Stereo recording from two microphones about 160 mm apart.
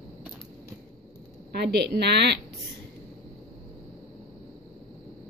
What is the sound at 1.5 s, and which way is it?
Speech, 90° right.